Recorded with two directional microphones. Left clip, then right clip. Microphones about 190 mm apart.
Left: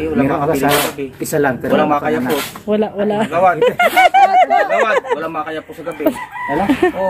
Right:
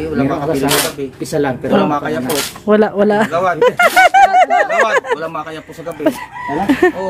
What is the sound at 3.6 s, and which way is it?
Speech, 15° right (ahead or behind).